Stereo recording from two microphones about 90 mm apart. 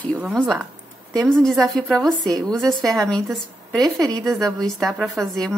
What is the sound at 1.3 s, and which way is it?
Speech, 5° left (ahead or behind).